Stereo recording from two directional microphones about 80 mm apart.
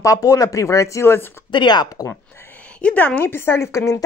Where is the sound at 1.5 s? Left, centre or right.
Left.